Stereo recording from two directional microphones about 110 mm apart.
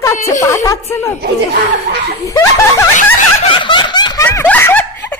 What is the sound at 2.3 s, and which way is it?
Snicker, 30° left (ahead or behind).